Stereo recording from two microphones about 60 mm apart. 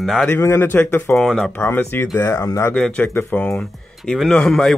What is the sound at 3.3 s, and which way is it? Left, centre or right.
Speech, left.